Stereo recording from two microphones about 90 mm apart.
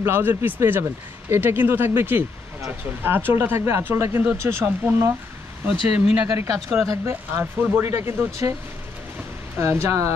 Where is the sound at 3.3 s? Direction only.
25° right (ahead or behind).